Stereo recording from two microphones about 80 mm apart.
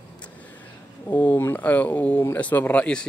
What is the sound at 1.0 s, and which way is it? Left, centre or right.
Speech, left.